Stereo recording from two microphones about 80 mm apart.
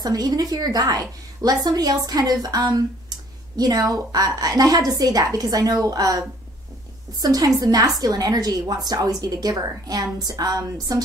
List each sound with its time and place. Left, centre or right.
0.0 s a woman's voice: right